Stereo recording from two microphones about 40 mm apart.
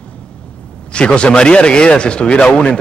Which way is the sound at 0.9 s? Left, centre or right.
Left.